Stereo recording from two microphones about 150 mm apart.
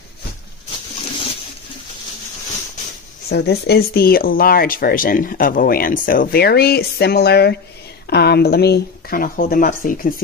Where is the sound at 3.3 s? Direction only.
90° left.